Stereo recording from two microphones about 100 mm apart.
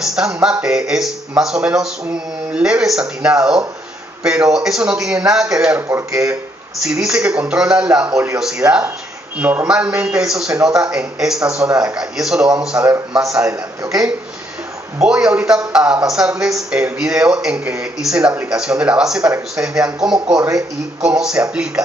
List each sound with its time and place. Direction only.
0.0 s a man's voice: 5° right (ahead or behind)
5.8 s speech: 25° right (ahead or behind)
6.8 s a man's voice: 5° right (ahead or behind)
13.2 s a man's voice: 30° right (ahead or behind)
15.0 s a man's voice: 5° right (ahead or behind)
20.3 s a man's voice: 35° right (ahead or behind)
21.0 s a man's voice: 10° right (ahead or behind)